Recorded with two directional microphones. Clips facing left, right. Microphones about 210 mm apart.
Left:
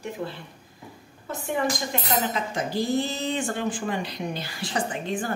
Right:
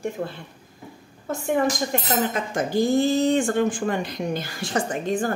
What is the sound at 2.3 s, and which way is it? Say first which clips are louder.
Speech: right 4 dB; 50° right (ahead or behind).